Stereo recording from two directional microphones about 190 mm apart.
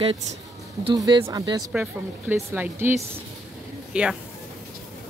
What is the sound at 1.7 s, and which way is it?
Speech, 10° right (ahead or behind).